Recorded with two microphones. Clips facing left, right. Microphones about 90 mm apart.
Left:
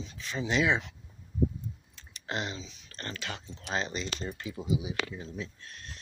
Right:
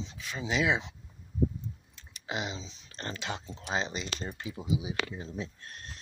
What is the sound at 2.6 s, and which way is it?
Speech, 30° right (ahead or behind).